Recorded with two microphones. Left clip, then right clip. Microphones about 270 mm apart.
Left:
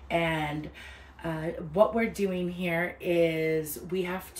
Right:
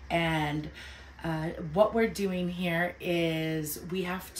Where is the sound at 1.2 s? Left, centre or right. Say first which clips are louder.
Left 1 dB; centre.